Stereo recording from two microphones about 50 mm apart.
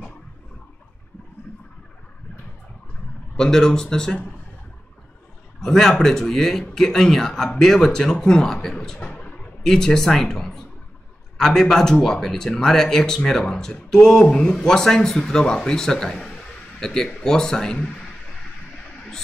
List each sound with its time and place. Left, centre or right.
3.3 s speech: centre
5.6 s speech: centre
9.0 s a sound: left
9.6 s speech: centre